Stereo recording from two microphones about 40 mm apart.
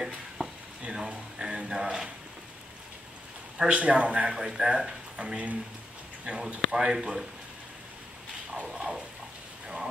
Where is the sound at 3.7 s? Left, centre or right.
Right.